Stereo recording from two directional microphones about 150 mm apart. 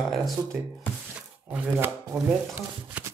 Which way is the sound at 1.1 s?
10° right (ahead or behind).